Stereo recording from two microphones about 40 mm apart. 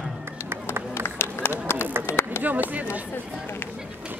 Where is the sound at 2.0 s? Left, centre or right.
Left.